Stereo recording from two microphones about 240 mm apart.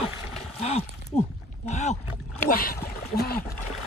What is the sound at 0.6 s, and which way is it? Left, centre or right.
Speech, left.